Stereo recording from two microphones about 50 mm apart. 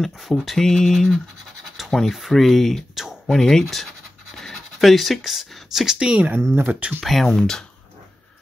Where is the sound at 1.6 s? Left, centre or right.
Centre.